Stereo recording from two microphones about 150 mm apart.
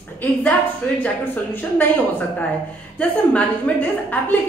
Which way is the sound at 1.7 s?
10° left (ahead or behind).